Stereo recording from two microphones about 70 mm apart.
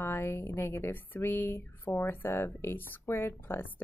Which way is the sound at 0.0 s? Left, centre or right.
Left.